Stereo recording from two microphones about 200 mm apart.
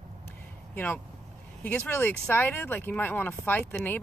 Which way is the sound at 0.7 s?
10° left (ahead or behind).